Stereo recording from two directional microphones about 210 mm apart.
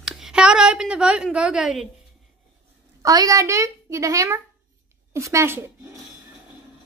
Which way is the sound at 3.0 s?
15° right (ahead or behind).